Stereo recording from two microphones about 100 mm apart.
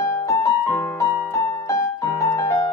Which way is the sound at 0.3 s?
30° left (ahead or behind).